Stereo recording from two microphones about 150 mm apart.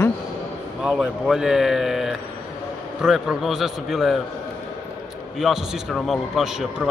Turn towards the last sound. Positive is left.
turn(degrees=-5)  # may be behind; listen again after turning